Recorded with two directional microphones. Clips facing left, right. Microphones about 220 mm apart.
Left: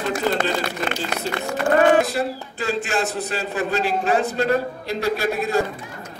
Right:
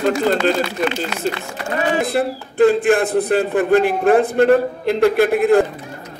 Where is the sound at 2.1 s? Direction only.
55° right (ahead or behind).